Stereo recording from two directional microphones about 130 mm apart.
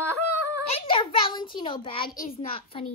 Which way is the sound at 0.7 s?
40° left (ahead or behind).